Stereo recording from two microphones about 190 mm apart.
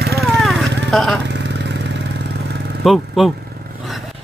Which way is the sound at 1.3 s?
65° right (ahead or behind).